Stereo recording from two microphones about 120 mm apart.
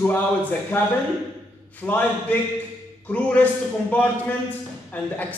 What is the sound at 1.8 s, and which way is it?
A man's voice, 15° left (ahead or behind).